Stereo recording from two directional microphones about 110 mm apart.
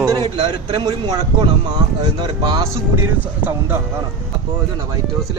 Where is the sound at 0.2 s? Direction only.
50° right (ahead or behind).